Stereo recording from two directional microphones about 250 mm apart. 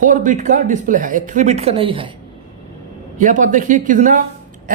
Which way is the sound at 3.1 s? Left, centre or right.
Right.